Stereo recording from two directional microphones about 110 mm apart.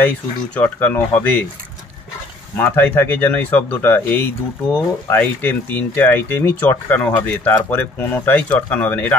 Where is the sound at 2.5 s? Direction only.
20° left (ahead or behind).